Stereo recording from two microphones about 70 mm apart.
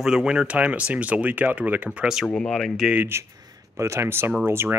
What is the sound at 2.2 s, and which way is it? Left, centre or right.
Speech, centre.